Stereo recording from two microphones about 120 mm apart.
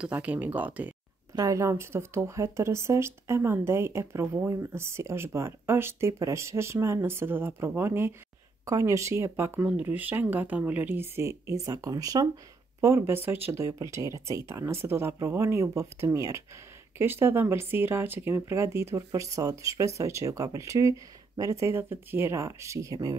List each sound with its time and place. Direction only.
0.0 s speech: 10° right (ahead or behind)
1.3 s speech: 30° right (ahead or behind)